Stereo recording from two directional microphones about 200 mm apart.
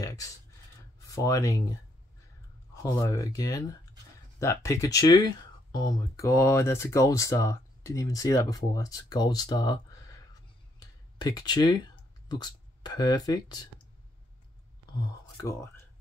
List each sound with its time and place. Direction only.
0.0 s a sound: 15° left (ahead or behind)
0.9 s speech: 15° left (ahead or behind)
2.7 s speech: 15° left (ahead or behind)
15.0 s speech: 15° left (ahead or behind)